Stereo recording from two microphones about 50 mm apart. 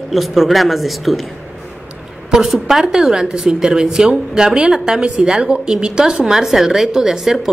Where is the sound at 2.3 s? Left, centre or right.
Centre.